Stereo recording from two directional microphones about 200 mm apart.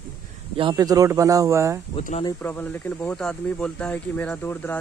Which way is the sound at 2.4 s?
10° left (ahead or behind).